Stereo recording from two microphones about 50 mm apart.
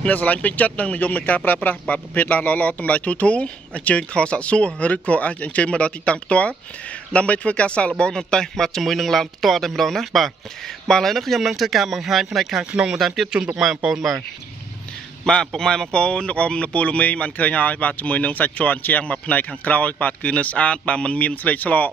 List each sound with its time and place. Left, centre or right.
0.0 s speech: left
8.0 s speech: centre
13.0 s speech: centre
15.2 s speech: centre; by 21.9 s left